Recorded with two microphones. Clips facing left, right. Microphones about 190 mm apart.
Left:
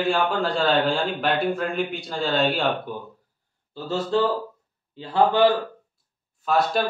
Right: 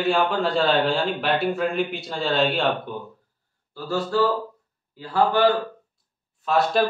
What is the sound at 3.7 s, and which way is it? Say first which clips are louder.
A man's voice: left 1 dB; 20° left (ahead or behind).